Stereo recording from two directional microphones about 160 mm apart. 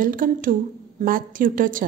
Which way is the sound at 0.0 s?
60° right (ahead or behind).